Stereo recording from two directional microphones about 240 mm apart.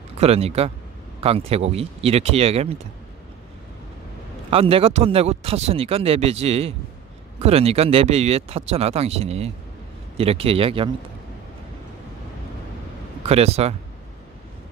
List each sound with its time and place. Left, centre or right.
0.2 s speech: right
4.5 s speech: right
13.2 s speech: right